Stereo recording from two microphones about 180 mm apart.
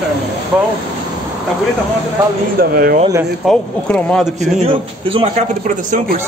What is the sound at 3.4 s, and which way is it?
Speech, 5° left (ahead or behind).